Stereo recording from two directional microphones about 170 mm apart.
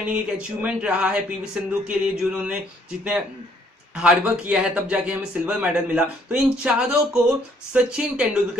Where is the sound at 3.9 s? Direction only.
5° right (ahead or behind).